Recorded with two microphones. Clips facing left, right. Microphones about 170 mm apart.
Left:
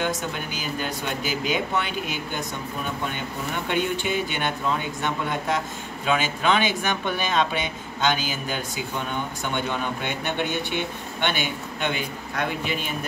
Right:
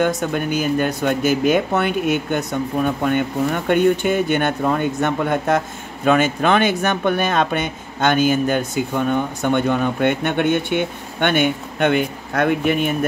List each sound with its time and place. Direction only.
0.0 s speech: 55° right (ahead or behind)